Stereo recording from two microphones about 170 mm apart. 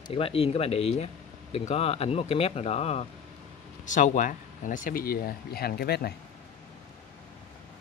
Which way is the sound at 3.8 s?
50° left (ahead or behind).